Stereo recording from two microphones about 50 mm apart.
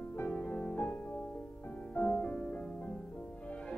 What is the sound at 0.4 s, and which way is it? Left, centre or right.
Music, left.